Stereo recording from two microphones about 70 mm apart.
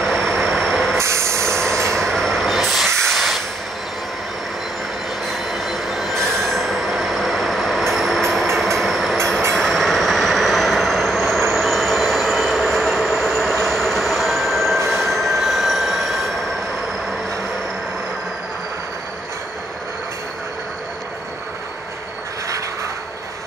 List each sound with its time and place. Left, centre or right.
0.0 s vehicle: centre
0.9 s vehicle: right
2.0 s train: centre
3.1 s hiss: centre
5.3 s train wheels squealing: centre
8.5 s train: centre